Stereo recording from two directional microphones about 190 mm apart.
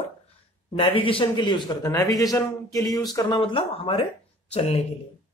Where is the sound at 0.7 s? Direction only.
30° left (ahead or behind).